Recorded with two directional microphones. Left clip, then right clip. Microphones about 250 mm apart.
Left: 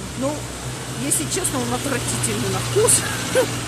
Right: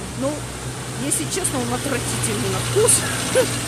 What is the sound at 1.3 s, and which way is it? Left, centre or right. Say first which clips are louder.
Speech: even; centre.